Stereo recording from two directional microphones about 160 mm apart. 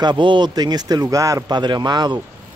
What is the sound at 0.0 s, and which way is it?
Speech, 30° right (ahead or behind).